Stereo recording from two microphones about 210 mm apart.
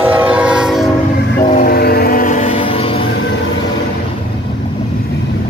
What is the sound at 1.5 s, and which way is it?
Vehicle, 45° left (ahead or behind).